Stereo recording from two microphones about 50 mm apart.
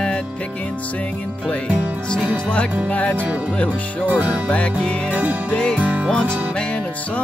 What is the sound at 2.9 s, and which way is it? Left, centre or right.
Music, left.